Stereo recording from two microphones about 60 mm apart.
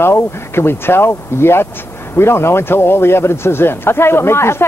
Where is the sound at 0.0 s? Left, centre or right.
Left.